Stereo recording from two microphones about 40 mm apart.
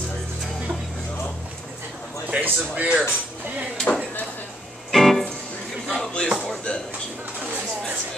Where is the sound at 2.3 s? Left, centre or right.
Right.